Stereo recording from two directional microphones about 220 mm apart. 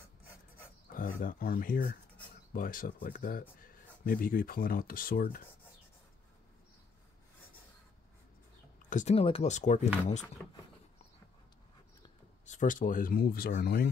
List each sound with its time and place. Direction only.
0.9 s speech: 40° left (ahead or behind)
8.9 s speech: 30° left (ahead or behind)
12.4 s speech: 35° left (ahead or behind)